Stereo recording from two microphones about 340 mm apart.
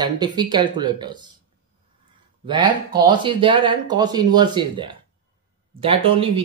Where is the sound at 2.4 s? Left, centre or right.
Centre.